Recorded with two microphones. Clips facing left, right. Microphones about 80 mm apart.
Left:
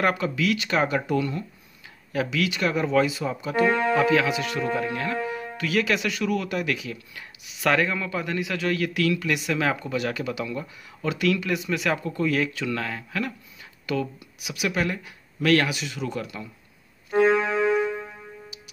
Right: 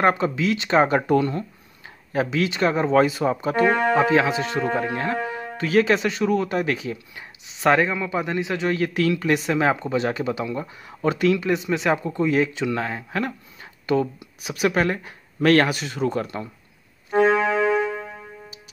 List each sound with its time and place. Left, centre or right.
0.0 s a man's voice: right
17.1 s music: right
17.7 s music: right